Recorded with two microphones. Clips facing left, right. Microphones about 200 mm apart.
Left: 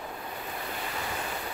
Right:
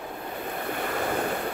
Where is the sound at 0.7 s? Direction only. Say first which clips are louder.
Right 10 dB; 55° right (ahead or behind).